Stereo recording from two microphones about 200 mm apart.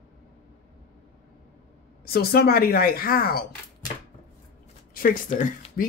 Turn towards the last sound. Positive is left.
turn(degrees=40)  # may be behind; listen again after turning